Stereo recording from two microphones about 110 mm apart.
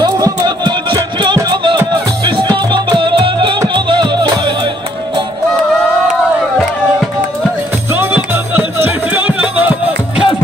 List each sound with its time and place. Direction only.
0.0 s music: 40° right (ahead or behind)
7.9 s music: 20° right (ahead or behind)